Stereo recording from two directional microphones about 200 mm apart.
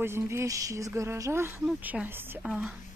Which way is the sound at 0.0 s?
15° right (ahead or behind).